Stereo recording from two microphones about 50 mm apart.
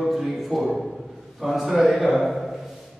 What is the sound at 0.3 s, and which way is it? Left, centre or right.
A man's voice, centre.